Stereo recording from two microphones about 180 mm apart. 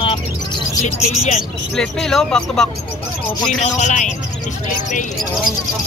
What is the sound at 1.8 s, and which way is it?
Speech, 5° left (ahead or behind).